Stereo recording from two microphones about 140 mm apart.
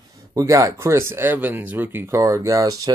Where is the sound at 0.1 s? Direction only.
25° right (ahead or behind).